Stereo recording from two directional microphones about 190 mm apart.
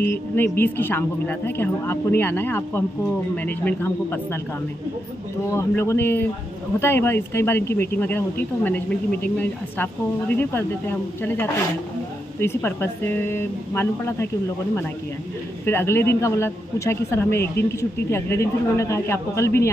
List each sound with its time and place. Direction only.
0.0 s speech: 10° left (ahead or behind)
5.5 s speech: 15° left (ahead or behind)
15.6 s speech: 10° left (ahead or behind)